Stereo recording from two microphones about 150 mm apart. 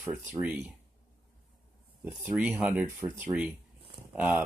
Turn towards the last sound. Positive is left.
turn(degrees=-5)  # may be behind; listen again after turning